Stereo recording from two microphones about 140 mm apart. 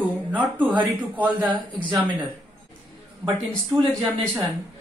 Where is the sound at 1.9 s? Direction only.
35° right (ahead or behind).